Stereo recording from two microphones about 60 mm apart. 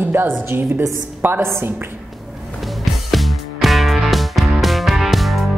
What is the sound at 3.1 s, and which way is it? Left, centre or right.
Music, centre.